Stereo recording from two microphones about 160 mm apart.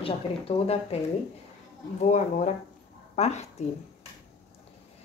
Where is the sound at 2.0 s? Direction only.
50° left (ahead or behind).